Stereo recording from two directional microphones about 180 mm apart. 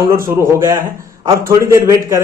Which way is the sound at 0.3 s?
15° right (ahead or behind).